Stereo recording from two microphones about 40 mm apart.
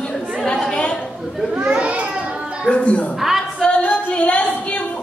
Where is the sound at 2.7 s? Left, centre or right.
Left.